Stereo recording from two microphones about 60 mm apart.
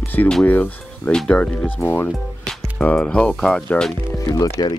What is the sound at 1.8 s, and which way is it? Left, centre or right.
Speech, left.